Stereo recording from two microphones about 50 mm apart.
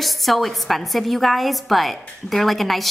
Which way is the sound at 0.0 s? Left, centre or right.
Centre.